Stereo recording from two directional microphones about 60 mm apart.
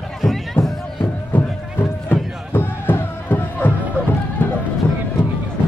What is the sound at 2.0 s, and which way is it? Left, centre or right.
Music, left.